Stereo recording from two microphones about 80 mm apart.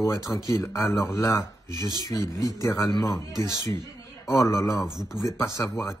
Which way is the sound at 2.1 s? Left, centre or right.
Left.